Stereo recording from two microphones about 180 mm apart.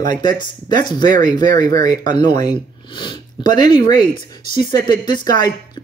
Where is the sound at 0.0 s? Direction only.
25° left (ahead or behind).